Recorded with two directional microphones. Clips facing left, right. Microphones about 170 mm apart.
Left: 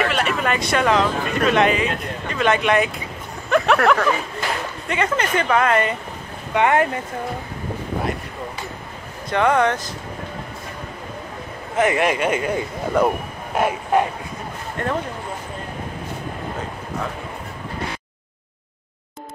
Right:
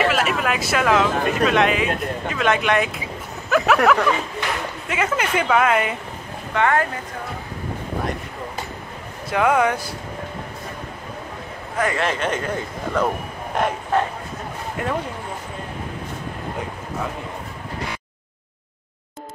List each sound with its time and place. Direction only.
0.0 s speech: centre (ahead or behind)
6.5 s speech: 20° left (ahead or behind)
9.3 s speech: 5° right (ahead or behind)
11.7 s speech: 20° left (ahead or behind)
14.8 s speech: 5° right (ahead or behind)